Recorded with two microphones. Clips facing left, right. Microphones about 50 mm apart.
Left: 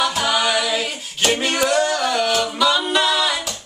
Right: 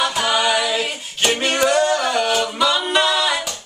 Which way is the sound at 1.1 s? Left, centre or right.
Centre.